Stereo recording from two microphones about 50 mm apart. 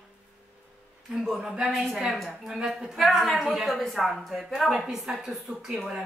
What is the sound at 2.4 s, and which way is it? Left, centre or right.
A woman's voice, centre.